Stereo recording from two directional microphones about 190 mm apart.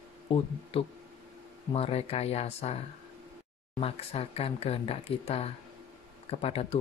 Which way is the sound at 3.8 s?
30° left (ahead or behind).